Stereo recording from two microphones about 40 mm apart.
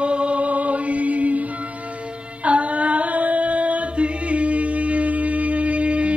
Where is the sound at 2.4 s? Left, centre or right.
Right.